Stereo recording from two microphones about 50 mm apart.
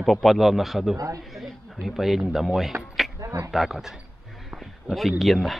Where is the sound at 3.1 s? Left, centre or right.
Right.